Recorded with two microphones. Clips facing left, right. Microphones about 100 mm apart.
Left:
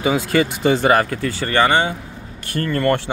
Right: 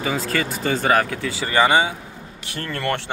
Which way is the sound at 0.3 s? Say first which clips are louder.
Left 6 dB; 15° left (ahead or behind).